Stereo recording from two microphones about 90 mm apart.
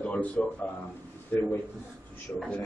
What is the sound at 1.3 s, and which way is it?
Speech, 25° left (ahead or behind).